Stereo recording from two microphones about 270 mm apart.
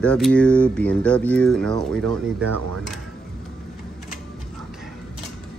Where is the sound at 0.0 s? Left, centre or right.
Centre.